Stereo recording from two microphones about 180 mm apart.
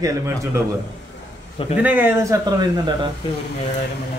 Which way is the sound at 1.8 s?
10° right (ahead or behind).